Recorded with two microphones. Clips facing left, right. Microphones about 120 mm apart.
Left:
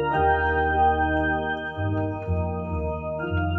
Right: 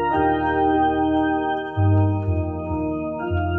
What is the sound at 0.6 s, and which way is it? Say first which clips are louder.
Music: right 3 dB; 40° right (ahead or behind).